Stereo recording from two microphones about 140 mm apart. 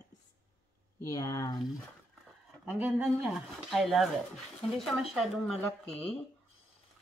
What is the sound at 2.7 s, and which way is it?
Speech, 5° right (ahead or behind).